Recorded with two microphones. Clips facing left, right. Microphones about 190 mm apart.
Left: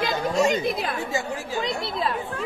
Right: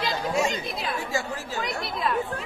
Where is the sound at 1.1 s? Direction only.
15° left (ahead or behind).